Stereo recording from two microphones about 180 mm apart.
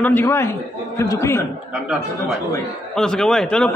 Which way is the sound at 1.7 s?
5° right (ahead or behind).